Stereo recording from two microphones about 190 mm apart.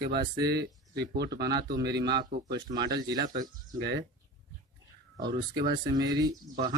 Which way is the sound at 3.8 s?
65° right (ahead or behind).